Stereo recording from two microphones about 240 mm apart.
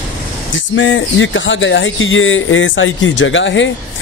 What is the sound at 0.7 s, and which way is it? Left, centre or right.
Speech, left.